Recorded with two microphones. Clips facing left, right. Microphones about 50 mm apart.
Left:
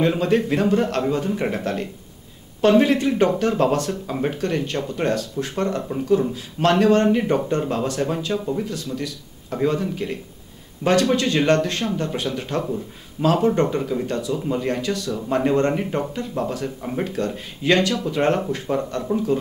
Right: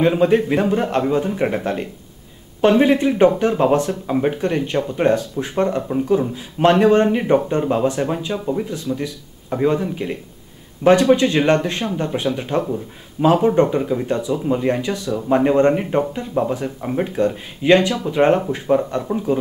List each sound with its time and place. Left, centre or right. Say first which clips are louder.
0.0 s speech: right 4 dB; centre